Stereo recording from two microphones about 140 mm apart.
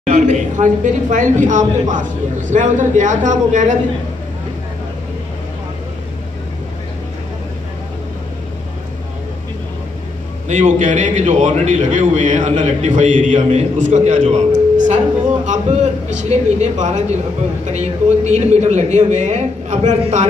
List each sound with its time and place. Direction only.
0.0 s a man's voice: 55° right (ahead or behind)
10.5 s a man's voice: 60° right (ahead or behind)